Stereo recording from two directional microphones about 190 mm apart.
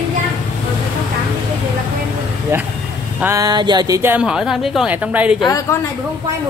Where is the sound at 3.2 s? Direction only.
15° right (ahead or behind).